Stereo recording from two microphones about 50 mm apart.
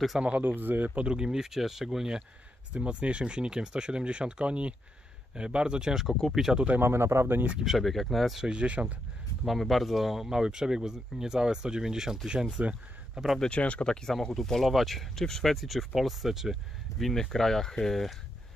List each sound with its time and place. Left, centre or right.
0.4 s speech: right
1.0 s speech: centre
6.0 s speech: centre
6.8 s speech: right
7.6 s speech: centre
8.4 s speech: centre
9.4 s speech: centre; by 13.2 s right
13.5 s speech: left
13.8 s speech: centre
17.0 s speech: centre